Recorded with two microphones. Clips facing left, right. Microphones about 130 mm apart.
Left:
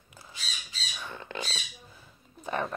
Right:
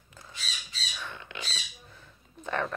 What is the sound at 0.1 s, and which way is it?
Squawk, 10° left (ahead or behind).